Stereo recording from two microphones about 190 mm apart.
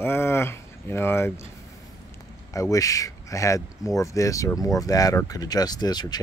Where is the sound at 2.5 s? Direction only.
15° left (ahead or behind).